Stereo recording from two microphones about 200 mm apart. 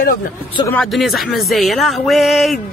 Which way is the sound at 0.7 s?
5° left (ahead or behind).